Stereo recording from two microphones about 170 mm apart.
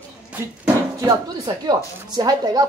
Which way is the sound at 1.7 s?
25° right (ahead or behind).